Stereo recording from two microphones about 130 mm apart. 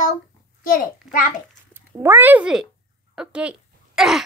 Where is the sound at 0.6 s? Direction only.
90° left.